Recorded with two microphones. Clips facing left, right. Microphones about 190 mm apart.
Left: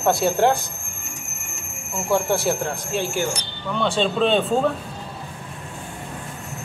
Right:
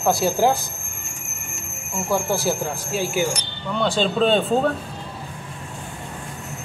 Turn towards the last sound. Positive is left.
turn(degrees=0)  # may be behind; listen again after turning